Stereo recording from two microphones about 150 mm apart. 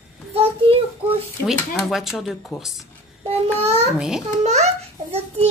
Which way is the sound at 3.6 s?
45° right (ahead or behind).